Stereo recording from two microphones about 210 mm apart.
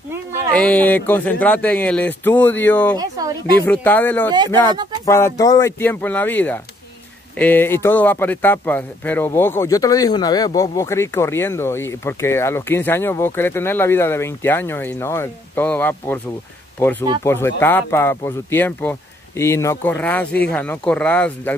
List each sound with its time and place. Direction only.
0.6 s speech: 5° left (ahead or behind)
3.0 s speech: 15° right (ahead or behind)
3.6 s speech: 10° left (ahead or behind)
17.2 s speech: 10° left (ahead or behind)